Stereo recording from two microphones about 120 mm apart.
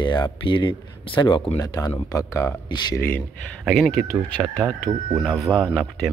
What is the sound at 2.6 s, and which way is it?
Speech, 40° left (ahead or behind).